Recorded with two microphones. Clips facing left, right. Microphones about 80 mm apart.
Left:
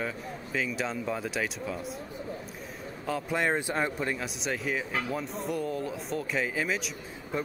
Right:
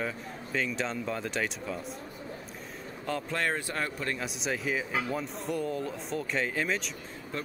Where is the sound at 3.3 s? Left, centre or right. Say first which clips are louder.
Left 5 dB; centre.